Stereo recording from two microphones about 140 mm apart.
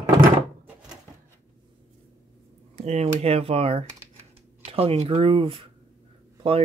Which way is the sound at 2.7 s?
50° right (ahead or behind).